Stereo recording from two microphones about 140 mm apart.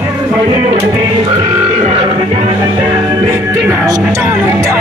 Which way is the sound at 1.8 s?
45° right (ahead or behind).